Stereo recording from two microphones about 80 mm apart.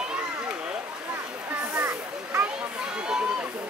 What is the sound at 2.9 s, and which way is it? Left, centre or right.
Run, centre.